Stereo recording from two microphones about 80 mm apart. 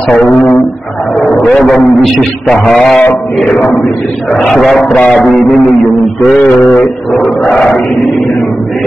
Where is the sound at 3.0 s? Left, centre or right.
Centre.